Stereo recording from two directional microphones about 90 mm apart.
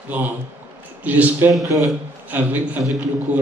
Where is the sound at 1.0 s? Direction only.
20° right (ahead or behind).